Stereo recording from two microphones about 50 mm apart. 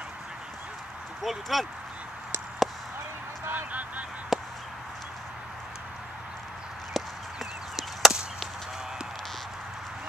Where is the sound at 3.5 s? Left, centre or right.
Right.